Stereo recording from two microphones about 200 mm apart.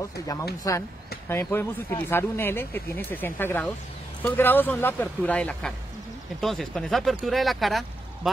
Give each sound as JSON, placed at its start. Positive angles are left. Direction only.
{"t": 0.7, "sound": "speech", "side_deg": 15}